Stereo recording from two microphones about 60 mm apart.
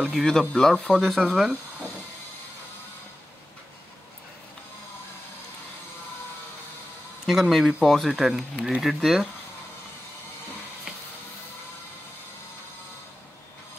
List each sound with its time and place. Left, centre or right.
0.0 s speech: centre
1.2 s speech: centre
7.2 s speech: centre